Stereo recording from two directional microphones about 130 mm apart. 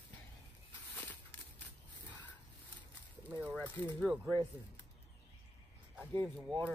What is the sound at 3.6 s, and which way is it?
Speech, 15° left (ahead or behind).